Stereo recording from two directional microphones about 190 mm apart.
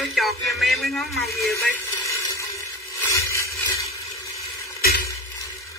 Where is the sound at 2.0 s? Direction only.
15° left (ahead or behind).